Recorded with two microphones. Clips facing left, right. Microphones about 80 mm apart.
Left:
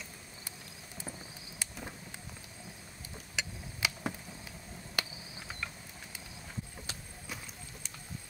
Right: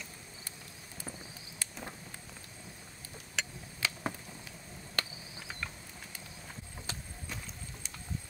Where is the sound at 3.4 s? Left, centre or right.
Centre.